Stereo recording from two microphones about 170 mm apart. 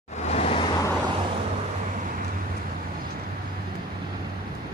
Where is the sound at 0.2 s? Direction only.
40° left (ahead or behind).